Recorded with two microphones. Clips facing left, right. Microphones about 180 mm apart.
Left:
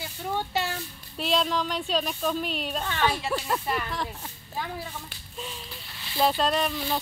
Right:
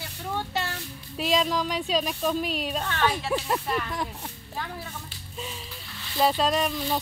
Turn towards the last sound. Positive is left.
turn(degrees=-5)  # may be behind; listen again after turning